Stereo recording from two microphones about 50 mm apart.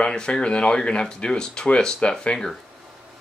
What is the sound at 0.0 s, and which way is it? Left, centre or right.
Speech, centre.